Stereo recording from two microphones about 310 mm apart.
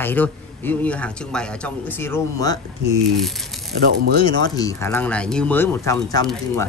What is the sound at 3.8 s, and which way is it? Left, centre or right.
Speech, right.